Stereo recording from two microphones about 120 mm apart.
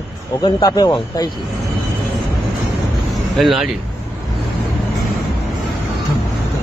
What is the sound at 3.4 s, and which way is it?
Speech, centre (ahead or behind).